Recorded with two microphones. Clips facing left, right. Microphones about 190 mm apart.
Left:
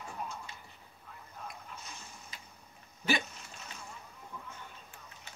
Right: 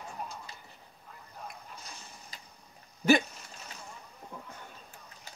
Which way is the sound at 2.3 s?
35° right (ahead or behind).